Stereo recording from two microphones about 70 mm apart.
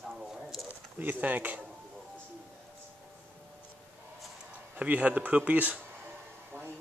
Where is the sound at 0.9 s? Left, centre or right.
Right.